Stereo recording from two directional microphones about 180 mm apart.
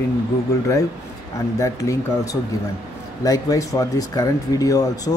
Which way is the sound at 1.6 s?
20° left (ahead or behind).